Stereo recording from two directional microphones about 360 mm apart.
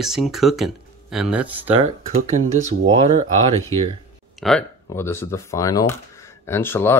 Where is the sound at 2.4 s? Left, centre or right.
Right.